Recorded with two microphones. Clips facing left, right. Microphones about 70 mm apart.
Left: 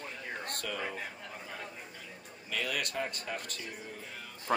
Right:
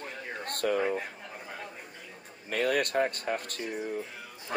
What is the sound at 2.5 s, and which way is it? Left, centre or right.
Speech, right.